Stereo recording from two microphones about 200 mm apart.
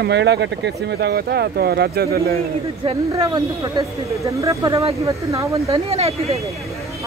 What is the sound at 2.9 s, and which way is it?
A woman's voice, 30° right (ahead or behind).